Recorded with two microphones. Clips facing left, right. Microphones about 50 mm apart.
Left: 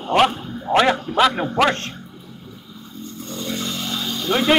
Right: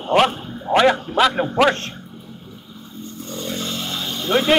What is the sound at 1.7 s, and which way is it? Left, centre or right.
Speech, right.